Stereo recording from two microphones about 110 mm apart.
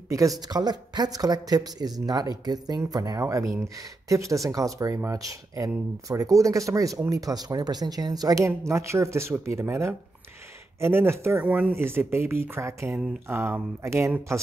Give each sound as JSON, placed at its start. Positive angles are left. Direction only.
{"t": 0.1, "sound": "speech", "side_deg": -30}